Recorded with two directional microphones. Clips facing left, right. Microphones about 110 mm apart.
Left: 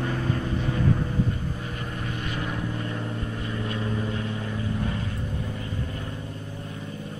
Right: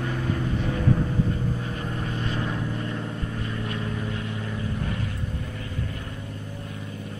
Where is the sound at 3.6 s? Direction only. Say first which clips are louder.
Left 4 dB; 20° left (ahead or behind).